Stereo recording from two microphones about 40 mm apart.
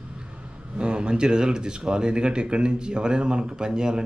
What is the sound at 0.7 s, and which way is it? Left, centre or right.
Speech, right.